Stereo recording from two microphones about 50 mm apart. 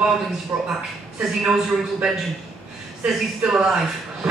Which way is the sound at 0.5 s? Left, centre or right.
Right.